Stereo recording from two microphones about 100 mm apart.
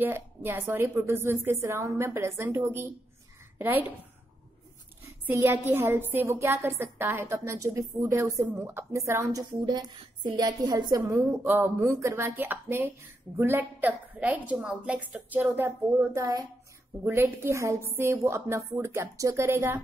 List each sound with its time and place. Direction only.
0.0 s a woman's voice: 20° right (ahead or behind)
5.3 s a woman's voice: 20° right (ahead or behind)
9.4 s a woman's voice: 45° right (ahead or behind)
11.4 s a woman's voice: 20° right (ahead or behind)
17.0 s a woman's voice: 25° right (ahead or behind)